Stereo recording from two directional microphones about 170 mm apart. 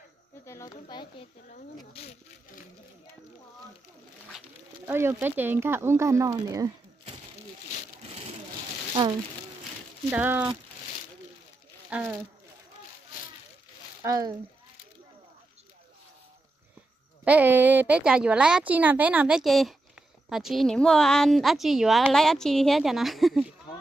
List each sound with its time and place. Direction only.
0.5 s speech: 20° left (ahead or behind)
4.8 s speech: 15° right (ahead or behind)
10.1 s speech: 10° right (ahead or behind)
11.9 s speech: 5° right (ahead or behind)
14.0 s speech: 20° right (ahead or behind)
17.2 s a woman's voice: 10° right (ahead or behind)